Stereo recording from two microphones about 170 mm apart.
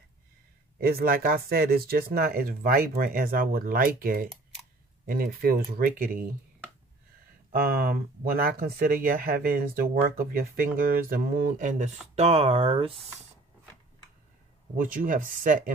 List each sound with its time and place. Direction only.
0.7 s speech: 60° right (ahead or behind)
7.5 s speech: 65° right (ahead or behind); by 11.9 s 50° right (ahead or behind)
12.2 s speech: 35° right (ahead or behind)
14.8 s speech: 50° right (ahead or behind)